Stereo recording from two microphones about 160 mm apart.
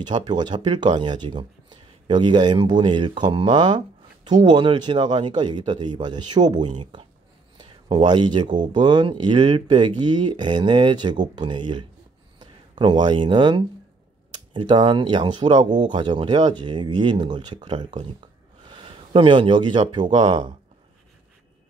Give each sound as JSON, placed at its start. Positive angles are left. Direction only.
{"t": 0.0, "sound": "speech", "side_deg": -25}
{"t": 18.7, "sound": "a sound", "side_deg": -35}
{"t": 19.9, "sound": "speech", "side_deg": -30}